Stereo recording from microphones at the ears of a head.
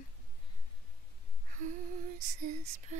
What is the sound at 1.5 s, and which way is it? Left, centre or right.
Lullaby, right.